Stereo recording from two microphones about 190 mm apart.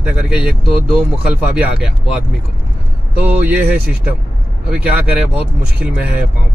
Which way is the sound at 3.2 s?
10° right (ahead or behind).